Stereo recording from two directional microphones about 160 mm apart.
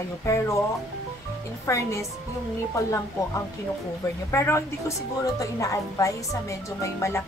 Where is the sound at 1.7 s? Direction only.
15° left (ahead or behind).